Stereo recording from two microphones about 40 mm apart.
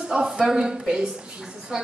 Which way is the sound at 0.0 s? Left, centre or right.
Centre.